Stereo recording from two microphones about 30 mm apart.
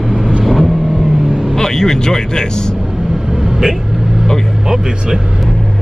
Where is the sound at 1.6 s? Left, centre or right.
Centre.